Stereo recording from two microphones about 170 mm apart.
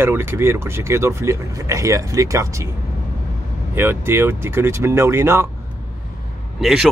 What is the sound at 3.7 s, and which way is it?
Speech, 15° right (ahead or behind).